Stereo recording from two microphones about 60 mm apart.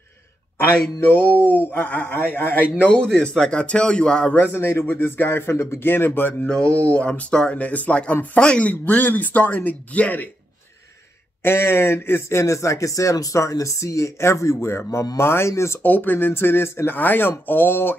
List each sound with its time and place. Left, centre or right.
1.0 s speech: left
2.9 s speech: centre
4.4 s speech: left
6.4 s speech: centre
11.4 s speech: left
15.8 s speech: left